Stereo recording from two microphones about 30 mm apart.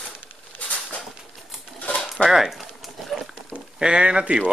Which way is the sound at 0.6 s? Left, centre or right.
Left.